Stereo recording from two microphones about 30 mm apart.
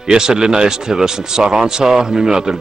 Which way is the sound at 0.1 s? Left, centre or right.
Right.